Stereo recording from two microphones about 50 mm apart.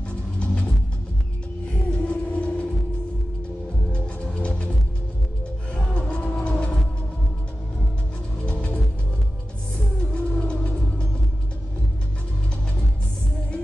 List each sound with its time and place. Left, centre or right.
1.9 s a sound: left
3.9 s music: left
5.8 s music: centre
8.5 s music: centre
10.1 s music: left